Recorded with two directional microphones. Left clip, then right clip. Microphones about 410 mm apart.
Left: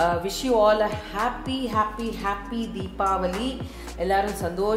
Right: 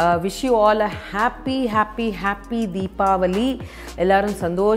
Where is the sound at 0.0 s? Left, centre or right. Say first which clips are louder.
Right 5 dB; right.